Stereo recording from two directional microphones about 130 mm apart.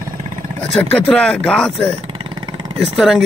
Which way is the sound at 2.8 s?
Centre (ahead or behind).